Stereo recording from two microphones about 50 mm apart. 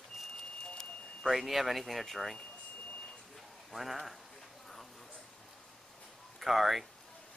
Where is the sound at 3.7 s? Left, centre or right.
Centre.